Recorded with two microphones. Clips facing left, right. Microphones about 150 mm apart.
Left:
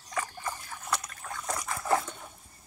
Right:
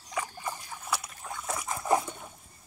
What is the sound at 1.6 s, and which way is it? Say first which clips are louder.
Dog: right 2 dB; 15° right (ahead or behind).